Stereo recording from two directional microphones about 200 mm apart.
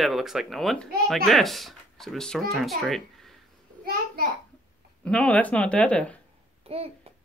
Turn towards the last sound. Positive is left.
turn(degrees=-30)  # may be behind; listen again after turning